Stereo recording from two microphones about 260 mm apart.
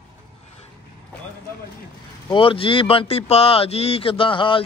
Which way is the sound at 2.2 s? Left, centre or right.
Centre.